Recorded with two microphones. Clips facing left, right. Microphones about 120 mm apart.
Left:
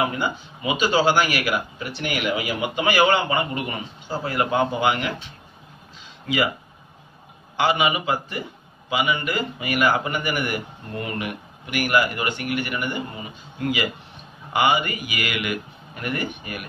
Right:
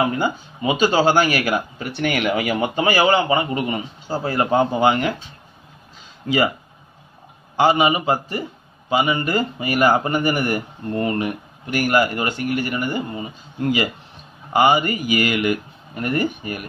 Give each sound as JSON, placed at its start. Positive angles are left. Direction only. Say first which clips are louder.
{"t": 0.7, "sound": "speech", "louder": "right 3 dB", "side_deg": -40}
{"t": 2.8, "sound": "a man's voice", "louder": "right 2 dB", "side_deg": -35}
{"t": 6.2, "sound": "a man's voice", "louder": "right 4 dB", "side_deg": -40}
{"t": 7.5, "sound": "a man's voice", "louder": "right 5 dB", "side_deg": -35}
{"t": 14.5, "sound": "a man's voice", "louder": "right 4 dB", "side_deg": -35}